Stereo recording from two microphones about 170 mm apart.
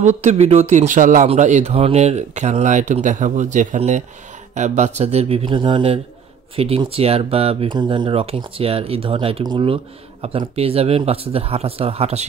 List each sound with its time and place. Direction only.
0.0 s speech: 40° right (ahead or behind)